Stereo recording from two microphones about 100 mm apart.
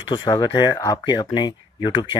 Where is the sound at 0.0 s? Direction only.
45° left (ahead or behind).